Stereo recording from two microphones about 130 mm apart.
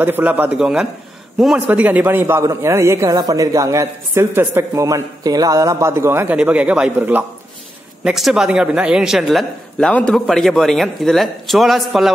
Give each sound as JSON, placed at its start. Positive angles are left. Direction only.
{"t": 0.0, "sound": "a man's voice", "side_deg": -15}
{"t": 1.7, "sound": "a man's voice", "side_deg": -10}